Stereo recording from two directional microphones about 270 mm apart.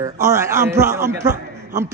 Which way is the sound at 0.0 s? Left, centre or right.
Centre.